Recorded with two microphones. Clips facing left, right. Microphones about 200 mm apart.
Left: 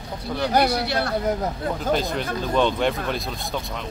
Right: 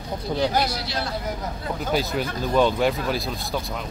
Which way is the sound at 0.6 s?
60° left (ahead or behind).